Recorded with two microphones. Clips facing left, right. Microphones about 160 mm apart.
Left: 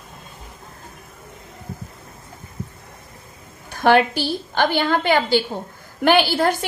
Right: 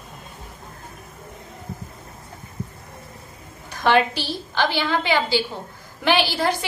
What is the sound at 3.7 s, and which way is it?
A woman's voice, 55° left (ahead or behind).